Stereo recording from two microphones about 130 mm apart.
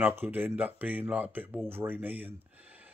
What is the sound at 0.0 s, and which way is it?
Speech, 15° right (ahead or behind).